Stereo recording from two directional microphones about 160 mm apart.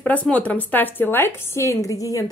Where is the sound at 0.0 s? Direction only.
10° left (ahead or behind).